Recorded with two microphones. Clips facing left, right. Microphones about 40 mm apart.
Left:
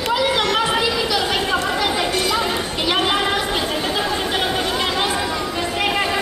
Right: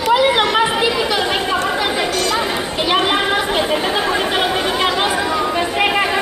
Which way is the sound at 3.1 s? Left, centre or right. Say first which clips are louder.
Right 3 dB; centre.